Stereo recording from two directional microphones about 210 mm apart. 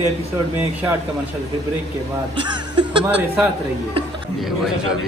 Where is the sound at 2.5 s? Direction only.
20° right (ahead or behind).